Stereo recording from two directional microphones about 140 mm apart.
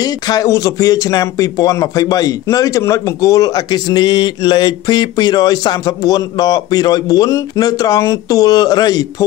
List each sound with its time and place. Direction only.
0.0 s speech: 25° left (ahead or behind)